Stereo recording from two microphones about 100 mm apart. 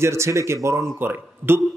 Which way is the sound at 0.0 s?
30° right (ahead or behind).